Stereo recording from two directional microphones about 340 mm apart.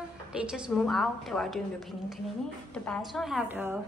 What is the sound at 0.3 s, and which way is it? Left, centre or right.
A woman's voice, centre.